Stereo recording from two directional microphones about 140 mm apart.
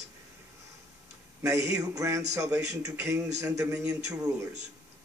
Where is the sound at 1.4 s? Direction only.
25° right (ahead or behind).